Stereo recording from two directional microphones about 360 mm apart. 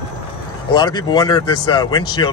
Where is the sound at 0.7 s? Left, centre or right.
Centre.